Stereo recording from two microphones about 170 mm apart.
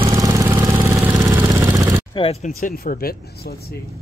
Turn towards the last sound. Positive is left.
turn(degrees=60)  # may be behind; listen again after turning